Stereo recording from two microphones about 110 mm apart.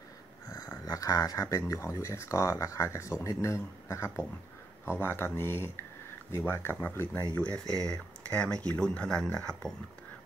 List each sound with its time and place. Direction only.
0.5 s speech: 30° left (ahead or behind); by 9.8 s 5° left (ahead or behind)